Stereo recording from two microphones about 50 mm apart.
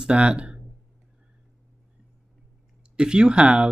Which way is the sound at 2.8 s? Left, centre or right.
Centre.